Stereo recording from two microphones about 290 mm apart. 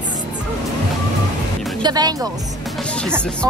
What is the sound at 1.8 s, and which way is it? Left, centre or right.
Speech, centre.